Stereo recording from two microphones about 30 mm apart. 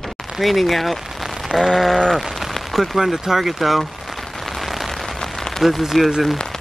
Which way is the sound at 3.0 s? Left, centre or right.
Centre.